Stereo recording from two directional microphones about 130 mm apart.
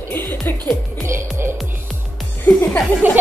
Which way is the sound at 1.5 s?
Centre (ahead or behind).